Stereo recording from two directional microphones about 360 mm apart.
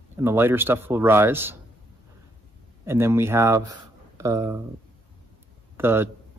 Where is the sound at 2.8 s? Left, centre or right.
Centre.